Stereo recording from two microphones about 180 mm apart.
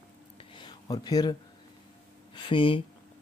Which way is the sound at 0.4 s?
25° left (ahead or behind).